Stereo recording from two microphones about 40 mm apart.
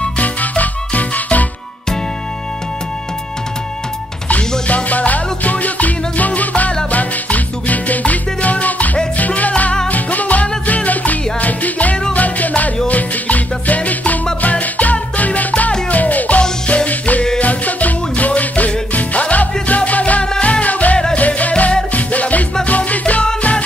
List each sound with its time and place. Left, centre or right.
0.2 s music: left
4.3 s music: left